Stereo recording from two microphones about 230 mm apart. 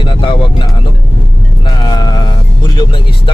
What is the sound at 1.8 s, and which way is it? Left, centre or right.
Speech, centre.